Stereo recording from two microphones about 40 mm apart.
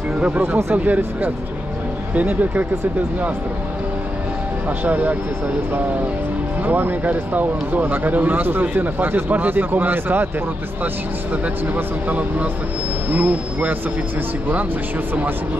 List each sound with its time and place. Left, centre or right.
0.4 s speech: right
0.8 s speech: right
4.6 s speech: right
6.6 s speech: right
8.8 s speech: right
11.7 s speech: right